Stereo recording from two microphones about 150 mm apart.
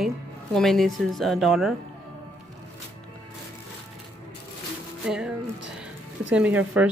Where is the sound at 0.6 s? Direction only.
Centre (ahead or behind).